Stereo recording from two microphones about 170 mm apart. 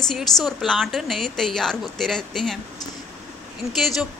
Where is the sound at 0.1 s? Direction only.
Centre (ahead or behind).